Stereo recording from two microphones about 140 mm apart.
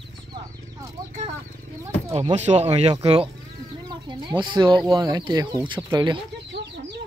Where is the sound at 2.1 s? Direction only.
50° right (ahead or behind).